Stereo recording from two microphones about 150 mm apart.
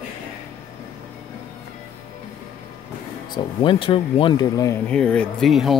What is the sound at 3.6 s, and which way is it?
Speech, 35° left (ahead or behind).